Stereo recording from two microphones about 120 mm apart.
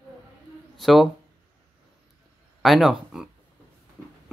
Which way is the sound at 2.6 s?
Centre (ahead or behind).